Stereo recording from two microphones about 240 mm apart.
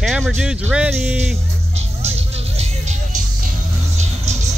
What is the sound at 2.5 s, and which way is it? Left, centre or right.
Music, right.